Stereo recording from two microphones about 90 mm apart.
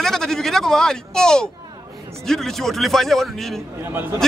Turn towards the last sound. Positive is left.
turn(degrees=-25)  # may be behind; listen again after turning